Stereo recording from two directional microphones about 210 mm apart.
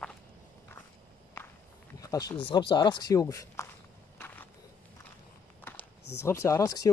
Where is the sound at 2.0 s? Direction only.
15° left (ahead or behind).